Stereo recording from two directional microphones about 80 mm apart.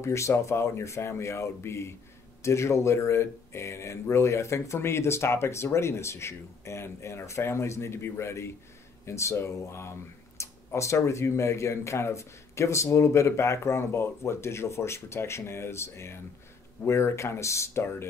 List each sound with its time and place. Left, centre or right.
0.0 s speech: left